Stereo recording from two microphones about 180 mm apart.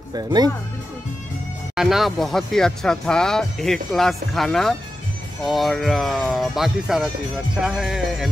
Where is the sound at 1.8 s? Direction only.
Centre (ahead or behind).